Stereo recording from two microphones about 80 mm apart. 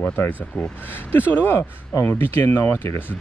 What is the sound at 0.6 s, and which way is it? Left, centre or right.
Speech, left.